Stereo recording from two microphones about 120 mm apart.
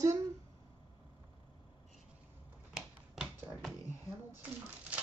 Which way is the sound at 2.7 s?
5° right (ahead or behind).